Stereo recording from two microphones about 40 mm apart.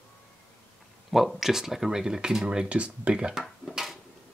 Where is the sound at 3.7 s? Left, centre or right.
Centre.